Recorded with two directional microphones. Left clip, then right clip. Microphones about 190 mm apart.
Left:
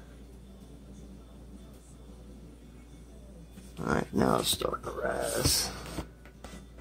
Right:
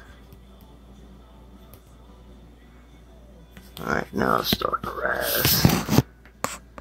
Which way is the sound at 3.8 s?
15° left (ahead or behind).